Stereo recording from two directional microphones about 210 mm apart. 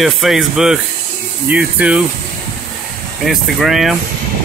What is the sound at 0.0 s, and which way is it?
Speech, centre (ahead or behind).